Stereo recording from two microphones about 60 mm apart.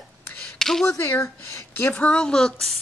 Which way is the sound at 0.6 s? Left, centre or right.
Centre.